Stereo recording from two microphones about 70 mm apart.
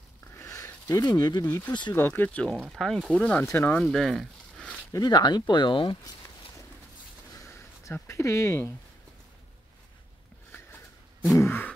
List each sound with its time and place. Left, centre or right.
0.4 s a sound: left
1.0 s speech: left
1.9 s speech: left
2.4 s speech: centre
3.2 s speech: centre
3.8 s speech: centre
5.0 s speech: left
7.3 s a sound: left
8.1 s speech: left
11.3 s a sound: left